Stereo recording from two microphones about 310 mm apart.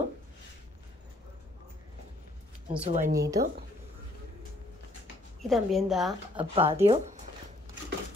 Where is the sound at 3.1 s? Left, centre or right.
Centre.